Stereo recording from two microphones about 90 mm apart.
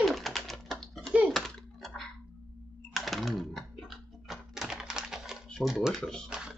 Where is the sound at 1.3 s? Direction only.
5° left (ahead or behind).